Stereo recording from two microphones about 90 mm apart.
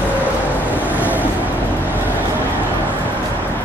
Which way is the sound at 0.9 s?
15° right (ahead or behind).